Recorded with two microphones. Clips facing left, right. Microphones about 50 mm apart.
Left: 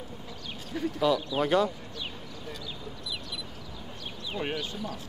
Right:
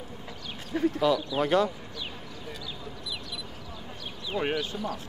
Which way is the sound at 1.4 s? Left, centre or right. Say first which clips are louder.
Right 1 dB; centre.